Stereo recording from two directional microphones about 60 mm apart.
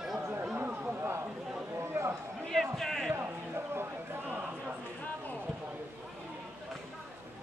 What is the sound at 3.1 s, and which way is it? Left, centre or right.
Music, right.